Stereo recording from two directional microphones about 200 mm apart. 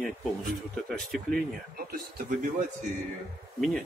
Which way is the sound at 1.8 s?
50° right (ahead or behind).